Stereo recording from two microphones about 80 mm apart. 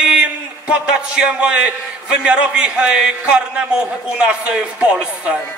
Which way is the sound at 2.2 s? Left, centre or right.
Centre.